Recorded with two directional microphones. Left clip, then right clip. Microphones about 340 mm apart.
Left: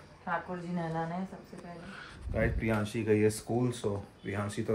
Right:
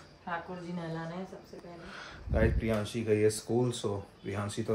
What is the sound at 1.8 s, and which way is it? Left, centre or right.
Speech, centre.